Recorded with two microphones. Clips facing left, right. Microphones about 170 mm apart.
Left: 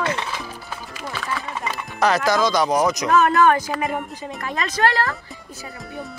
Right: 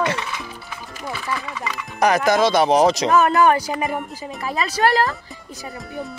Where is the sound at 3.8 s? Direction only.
Centre (ahead or behind).